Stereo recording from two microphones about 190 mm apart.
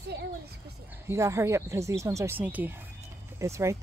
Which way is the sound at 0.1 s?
60° right (ahead or behind).